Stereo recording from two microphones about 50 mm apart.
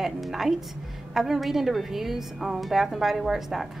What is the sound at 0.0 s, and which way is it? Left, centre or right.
A woman's voice, centre.